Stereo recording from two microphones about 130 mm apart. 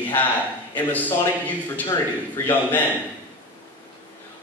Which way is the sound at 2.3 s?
15° left (ahead or behind).